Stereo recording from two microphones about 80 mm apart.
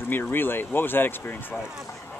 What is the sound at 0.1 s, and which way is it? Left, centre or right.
Speech, left.